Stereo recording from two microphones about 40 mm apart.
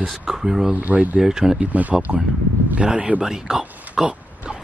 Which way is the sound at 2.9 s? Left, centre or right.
Right.